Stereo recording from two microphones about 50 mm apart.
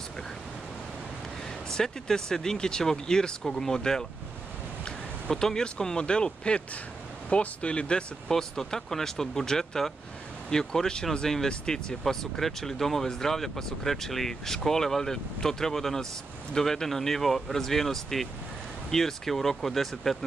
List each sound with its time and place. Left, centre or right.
1.7 s speech: centre
5.3 s speech: centre
8.3 s speech: centre